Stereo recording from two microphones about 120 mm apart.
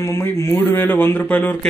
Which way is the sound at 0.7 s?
15° left (ahead or behind).